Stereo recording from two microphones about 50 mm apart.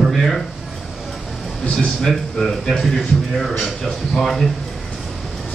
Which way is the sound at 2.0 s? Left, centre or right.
Centre.